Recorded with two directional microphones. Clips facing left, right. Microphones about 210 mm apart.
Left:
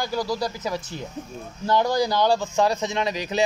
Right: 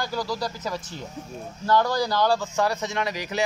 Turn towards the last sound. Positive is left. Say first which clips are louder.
# left 3 dB
turn(degrees=20)  # may be behind; listen again after turning